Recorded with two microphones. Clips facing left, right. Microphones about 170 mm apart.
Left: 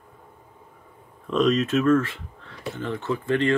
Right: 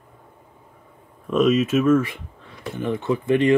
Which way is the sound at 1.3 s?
10° right (ahead or behind).